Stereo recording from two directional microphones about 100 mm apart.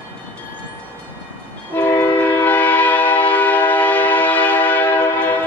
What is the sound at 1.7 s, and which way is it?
Train, 20° left (ahead or behind).